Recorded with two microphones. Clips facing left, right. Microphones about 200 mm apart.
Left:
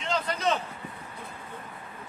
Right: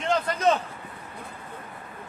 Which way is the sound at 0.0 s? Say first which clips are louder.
Right 4 dB; 50° right (ahead or behind).